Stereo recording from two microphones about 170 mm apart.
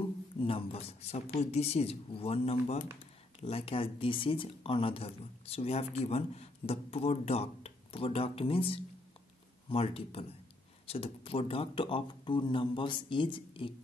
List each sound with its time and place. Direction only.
0.4 s speech: 30° left (ahead or behind)